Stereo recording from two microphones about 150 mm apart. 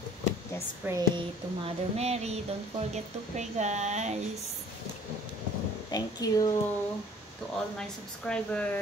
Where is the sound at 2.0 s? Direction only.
45° right (ahead or behind).